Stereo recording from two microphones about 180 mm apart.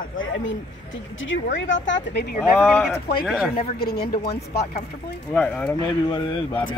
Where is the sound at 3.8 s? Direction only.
60° left (ahead or behind).